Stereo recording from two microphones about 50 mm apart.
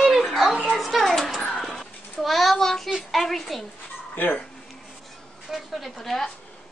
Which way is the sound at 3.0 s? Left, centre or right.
Centre.